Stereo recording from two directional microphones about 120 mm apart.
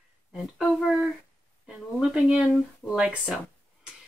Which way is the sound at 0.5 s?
Centre (ahead or behind).